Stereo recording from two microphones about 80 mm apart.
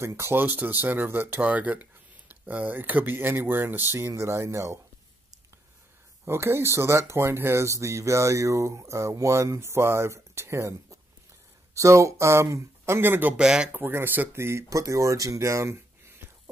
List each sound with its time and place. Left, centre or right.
0.0 s speech: right
6.2 s speech: right
13.4 s speech: centre
13.7 s speech: right